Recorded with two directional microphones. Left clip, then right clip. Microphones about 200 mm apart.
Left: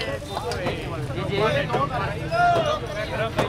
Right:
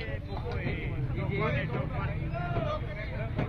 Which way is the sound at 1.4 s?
55° left (ahead or behind).